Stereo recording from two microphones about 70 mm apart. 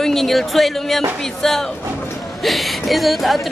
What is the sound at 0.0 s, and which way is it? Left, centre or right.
A woman's voice, centre.